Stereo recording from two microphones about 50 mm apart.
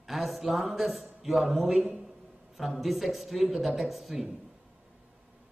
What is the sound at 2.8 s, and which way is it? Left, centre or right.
Speech, centre.